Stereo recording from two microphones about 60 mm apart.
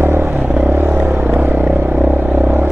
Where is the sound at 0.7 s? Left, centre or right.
Right.